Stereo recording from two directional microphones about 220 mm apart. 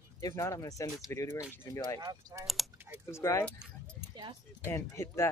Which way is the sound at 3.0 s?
10° left (ahead or behind).